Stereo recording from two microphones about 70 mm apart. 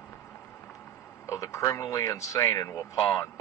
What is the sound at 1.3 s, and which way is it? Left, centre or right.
Speech, left.